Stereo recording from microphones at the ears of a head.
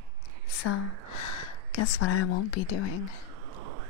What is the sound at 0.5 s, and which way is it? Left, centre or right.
Speech, left.